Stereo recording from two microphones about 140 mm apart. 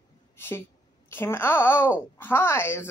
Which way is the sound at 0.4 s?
15° left (ahead or behind).